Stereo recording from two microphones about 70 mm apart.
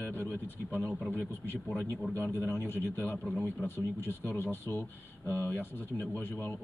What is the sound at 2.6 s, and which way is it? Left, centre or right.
Speech, left.